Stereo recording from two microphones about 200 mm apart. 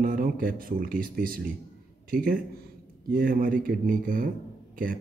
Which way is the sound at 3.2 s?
45° right (ahead or behind).